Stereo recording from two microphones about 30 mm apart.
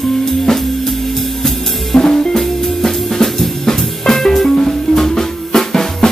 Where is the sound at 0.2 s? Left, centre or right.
Centre.